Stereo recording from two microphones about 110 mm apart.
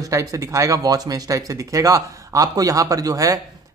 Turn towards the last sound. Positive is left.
turn(degrees=-30)  # may be behind; listen again after turning